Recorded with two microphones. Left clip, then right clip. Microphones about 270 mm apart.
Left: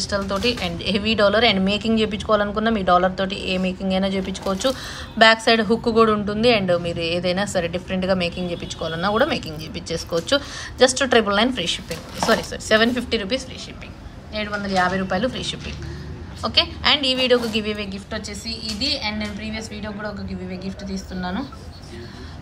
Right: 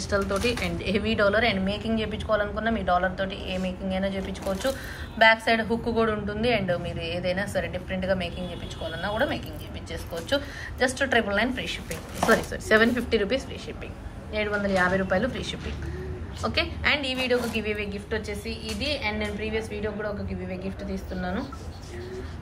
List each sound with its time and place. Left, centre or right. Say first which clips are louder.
0.0 s a woman's voice: left 3 dB; centre
9.8 s a woman's voice: left 8 dB; centre